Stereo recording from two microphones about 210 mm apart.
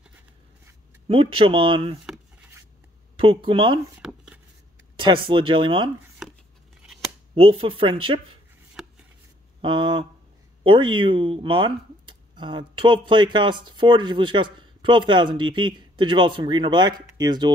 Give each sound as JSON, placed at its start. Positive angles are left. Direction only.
{"t": 1.0, "sound": "speech", "side_deg": -25}
{"t": 2.0, "sound": "a sound", "side_deg": -5}
{"t": 3.2, "sound": "speech", "side_deg": -25}
{"t": 4.0, "sound": "shuffling cards", "side_deg": -5}
{"t": 4.9, "sound": "speech", "side_deg": -25}
{"t": 7.3, "sound": "speech", "side_deg": -25}
{"t": 9.6, "sound": "speech", "side_deg": -25}